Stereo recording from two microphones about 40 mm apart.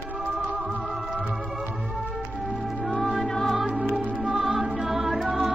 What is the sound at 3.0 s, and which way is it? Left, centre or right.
Music, centre.